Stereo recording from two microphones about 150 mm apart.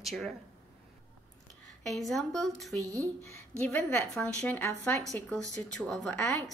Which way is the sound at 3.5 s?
10° left (ahead or behind).